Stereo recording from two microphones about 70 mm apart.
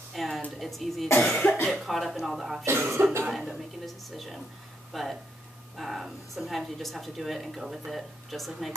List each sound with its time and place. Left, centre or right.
0.1 s a sound: centre
0.6 s speech: centre
1.2 s cough: centre
1.7 s speech: centre
2.6 s cough: right
3.3 s speech: centre